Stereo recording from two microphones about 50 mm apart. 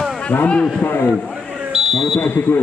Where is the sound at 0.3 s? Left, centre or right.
Left.